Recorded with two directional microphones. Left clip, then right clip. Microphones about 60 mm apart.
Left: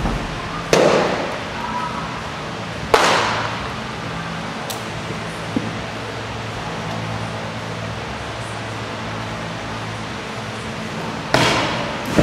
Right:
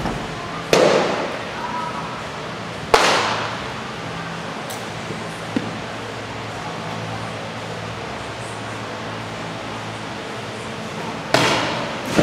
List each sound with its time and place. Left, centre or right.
0.7 s fireworks: centre
2.9 s a sound: centre
11.3 s basketball bounce: right